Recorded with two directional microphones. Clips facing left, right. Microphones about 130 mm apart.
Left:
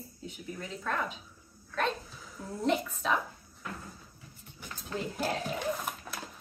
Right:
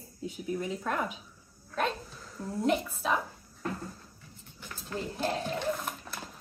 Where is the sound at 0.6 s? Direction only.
15° right (ahead or behind).